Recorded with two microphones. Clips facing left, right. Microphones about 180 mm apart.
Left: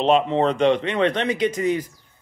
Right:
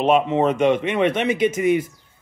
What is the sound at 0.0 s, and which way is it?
A man's voice, 5° right (ahead or behind).